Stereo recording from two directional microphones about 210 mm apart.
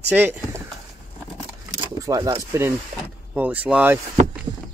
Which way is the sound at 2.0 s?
15° right (ahead or behind).